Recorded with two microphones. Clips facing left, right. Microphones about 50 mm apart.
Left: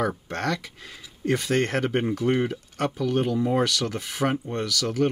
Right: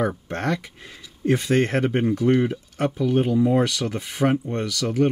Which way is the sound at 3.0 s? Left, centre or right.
Centre.